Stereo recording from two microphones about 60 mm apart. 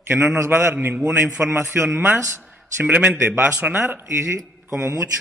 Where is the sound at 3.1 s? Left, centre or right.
Right.